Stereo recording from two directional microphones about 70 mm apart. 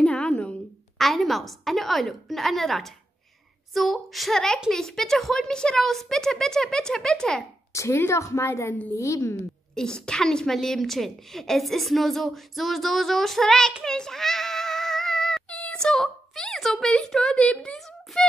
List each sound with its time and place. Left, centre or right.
0.0 s a sound: centre
0.9 s a woman's voice: centre
7.7 s a woman's voice: left
9.8 s a woman's voice: centre
13.8 s a sound: centre
16.9 s a child's voice: centre